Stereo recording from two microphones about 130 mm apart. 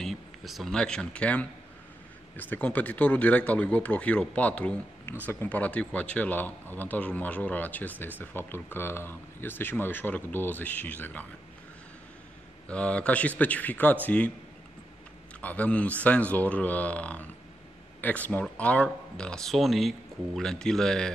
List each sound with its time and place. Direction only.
0.0 s speech: centre (ahead or behind)
12.6 s speech: 10° left (ahead or behind)
15.4 s speech: 10° left (ahead or behind)